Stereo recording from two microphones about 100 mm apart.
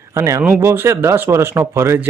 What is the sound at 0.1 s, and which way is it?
Speech, 30° right (ahead or behind).